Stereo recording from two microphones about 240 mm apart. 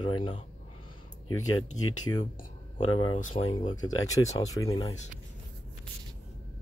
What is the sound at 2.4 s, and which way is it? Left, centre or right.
Speech, left.